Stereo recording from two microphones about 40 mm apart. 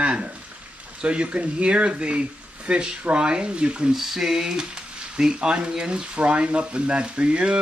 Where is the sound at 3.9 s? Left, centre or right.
Centre.